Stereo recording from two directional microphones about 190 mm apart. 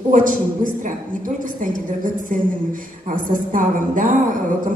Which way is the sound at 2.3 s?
45° right (ahead or behind).